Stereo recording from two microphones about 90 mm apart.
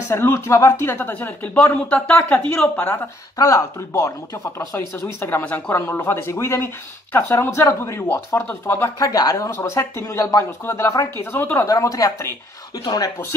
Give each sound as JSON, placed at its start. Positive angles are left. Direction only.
{"t": 0.1, "sound": "speech", "side_deg": 30}
{"t": 3.3, "sound": "speech", "side_deg": 40}
{"t": 9.1, "sound": "speech", "side_deg": 40}